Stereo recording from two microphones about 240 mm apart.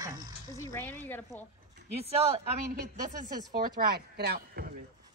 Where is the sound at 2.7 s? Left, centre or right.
Right.